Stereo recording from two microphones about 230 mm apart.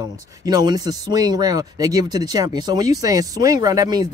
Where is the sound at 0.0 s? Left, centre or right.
Centre.